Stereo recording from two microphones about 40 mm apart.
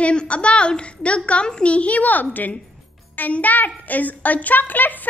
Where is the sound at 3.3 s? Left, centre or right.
Left.